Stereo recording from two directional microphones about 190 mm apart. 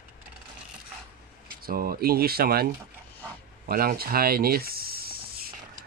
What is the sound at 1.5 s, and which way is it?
Speech, 50° right (ahead or behind).